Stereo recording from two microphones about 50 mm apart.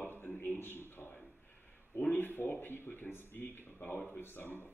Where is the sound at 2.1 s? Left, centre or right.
Left.